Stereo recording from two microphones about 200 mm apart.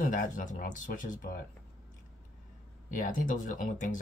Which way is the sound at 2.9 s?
40° left (ahead or behind).